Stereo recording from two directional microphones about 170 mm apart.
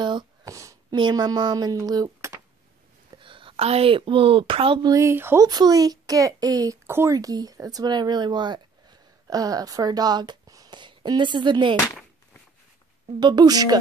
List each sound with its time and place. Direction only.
0.0 s a sound: 25° right (ahead or behind)
3.2 s a woman's voice: 30° right (ahead or behind)
13.2 s speech: 25° right (ahead or behind)